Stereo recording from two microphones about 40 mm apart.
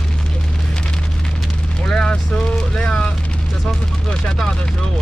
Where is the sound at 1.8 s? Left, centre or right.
Centre.